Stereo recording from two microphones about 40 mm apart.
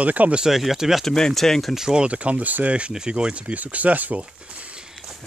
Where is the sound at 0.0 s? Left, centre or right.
Right.